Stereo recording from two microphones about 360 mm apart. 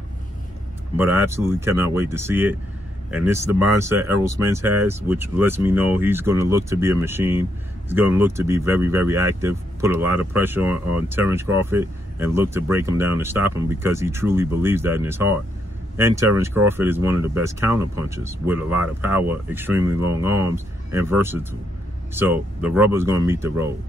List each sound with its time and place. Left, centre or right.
0.9 s speech: centre